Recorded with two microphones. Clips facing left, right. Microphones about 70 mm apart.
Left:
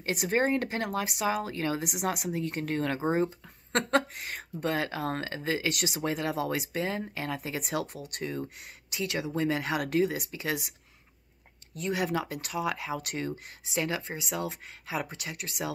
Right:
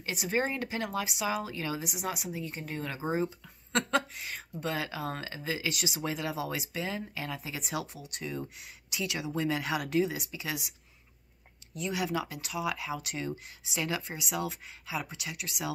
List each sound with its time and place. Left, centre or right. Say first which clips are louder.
0.0 s speech: left 4 dB; left
11.7 s speech: left 2 dB; left
13.7 s speech: left 2 dB; left